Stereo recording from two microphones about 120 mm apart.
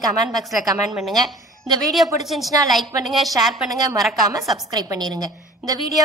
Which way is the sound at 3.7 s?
30° right (ahead or behind).